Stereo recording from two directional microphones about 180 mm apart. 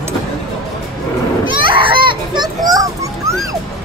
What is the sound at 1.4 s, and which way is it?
Children playing, 30° right (ahead or behind).